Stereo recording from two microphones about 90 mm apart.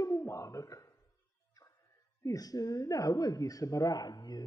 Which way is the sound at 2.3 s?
45° left (ahead or behind).